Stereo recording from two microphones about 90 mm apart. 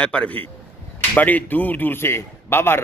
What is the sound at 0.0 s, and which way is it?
A man's voice, 15° left (ahead or behind).